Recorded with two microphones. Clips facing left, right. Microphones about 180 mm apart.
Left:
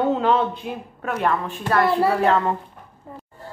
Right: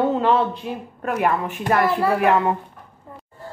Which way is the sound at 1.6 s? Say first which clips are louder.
Left 1 dB; 15° right (ahead or behind).